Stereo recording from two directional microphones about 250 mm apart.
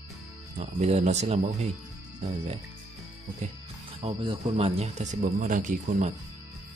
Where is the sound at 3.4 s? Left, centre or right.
Right.